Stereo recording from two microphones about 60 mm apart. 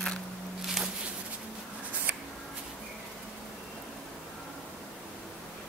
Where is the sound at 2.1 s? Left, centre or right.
Right.